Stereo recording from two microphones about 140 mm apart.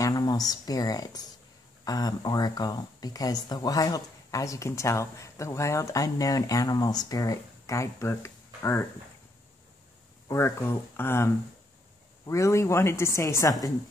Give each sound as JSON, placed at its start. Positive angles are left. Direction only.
{"t": 0.0, "sound": "speech", "side_deg": 25}
{"t": 10.2, "sound": "speech", "side_deg": 20}